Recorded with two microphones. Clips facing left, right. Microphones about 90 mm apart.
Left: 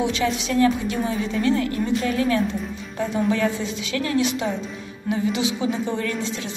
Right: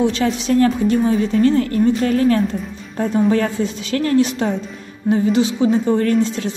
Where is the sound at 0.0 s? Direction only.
40° right (ahead or behind).